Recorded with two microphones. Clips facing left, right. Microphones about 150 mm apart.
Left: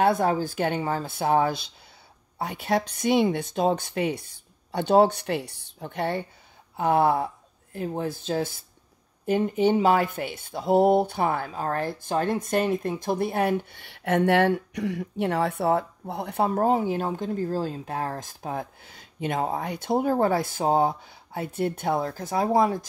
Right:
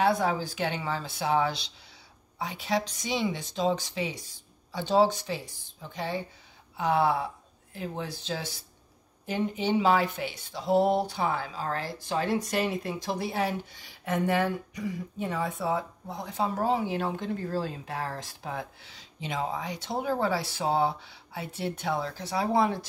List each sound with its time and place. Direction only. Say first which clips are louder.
0.0 s a woman's voice: left 4 dB; 50° left (ahead or behind)